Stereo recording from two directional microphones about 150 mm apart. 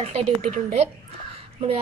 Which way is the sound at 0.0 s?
50° right (ahead or behind).